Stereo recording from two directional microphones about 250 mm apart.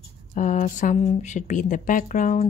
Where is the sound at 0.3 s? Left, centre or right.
Left.